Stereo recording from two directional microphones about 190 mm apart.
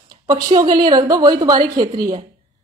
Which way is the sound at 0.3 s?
20° right (ahead or behind).